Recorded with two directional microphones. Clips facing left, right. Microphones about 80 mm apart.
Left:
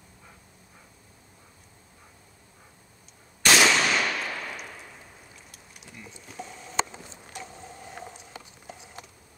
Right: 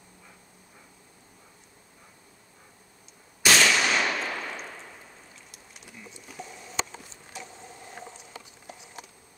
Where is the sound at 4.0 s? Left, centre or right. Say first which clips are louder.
Right 1 dB; centre.